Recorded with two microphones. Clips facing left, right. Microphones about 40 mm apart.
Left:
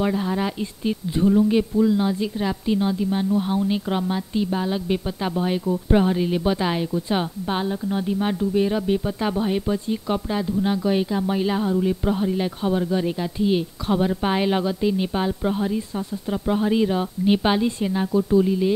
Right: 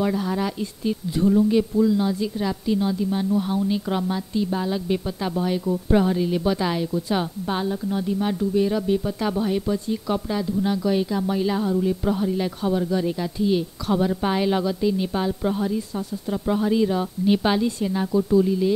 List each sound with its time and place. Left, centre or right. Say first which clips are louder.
0.0 s a woman's voice: left 1 dB; centre